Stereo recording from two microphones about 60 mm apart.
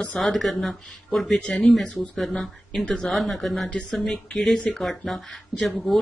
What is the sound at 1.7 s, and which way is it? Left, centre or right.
Speech, centre.